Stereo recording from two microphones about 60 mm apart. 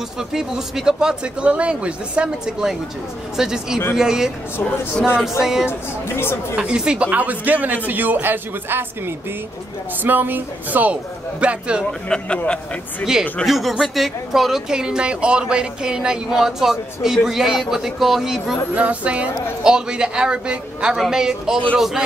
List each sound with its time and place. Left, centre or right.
0.3 s speech: centre
5.4 s speech: centre
5.7 s speech: left
6.5 s speech: centre
7.1 s a man's voice: right
11.8 s a man's voice: centre
13.5 s speech: centre
18.8 s a man's voice: right